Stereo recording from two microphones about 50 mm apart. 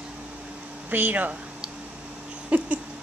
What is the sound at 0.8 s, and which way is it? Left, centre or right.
Speech, right.